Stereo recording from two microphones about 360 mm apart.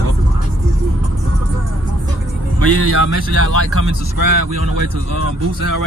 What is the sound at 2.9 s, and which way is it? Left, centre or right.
Speech, left.